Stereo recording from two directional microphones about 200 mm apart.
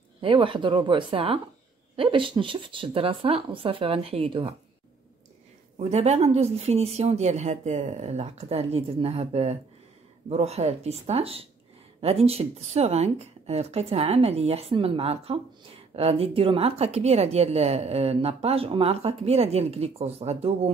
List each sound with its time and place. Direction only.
0.2 s speech: 25° right (ahead or behind)
5.8 s a woman's voice: 35° right (ahead or behind)